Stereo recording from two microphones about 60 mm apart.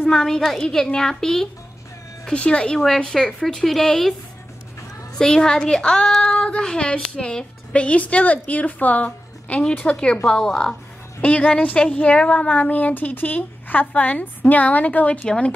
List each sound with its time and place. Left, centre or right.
0.1 s speech: centre
2.2 s speech: centre
5.1 s speech: centre
11.1 s speech: left